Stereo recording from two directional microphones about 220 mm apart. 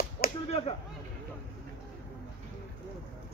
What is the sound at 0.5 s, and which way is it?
Whip, 25° left (ahead or behind).